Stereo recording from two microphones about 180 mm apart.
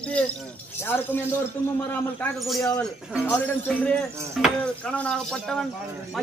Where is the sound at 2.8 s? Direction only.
10° left (ahead or behind).